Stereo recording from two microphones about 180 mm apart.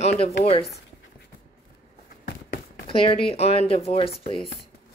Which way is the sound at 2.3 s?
65° left (ahead or behind).